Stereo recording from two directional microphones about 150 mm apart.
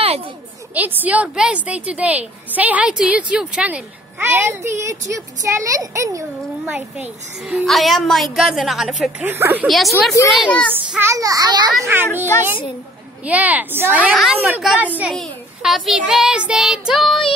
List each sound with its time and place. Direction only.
0.7 s a woman's voice: 10° right (ahead or behind)
6.7 s child singing: centre (ahead or behind)
9.2 s a woman's voice: 15° right (ahead or behind)
9.7 s child singing: centre (ahead or behind)
10.9 s a child's voice: 15° right (ahead or behind)
11.8 s a woman's voice: 15° right (ahead or behind)
15.1 s child singing: centre (ahead or behind)